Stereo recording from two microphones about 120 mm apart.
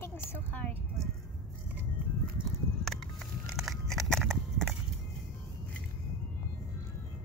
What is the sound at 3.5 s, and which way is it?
Biting, centre (ahead or behind).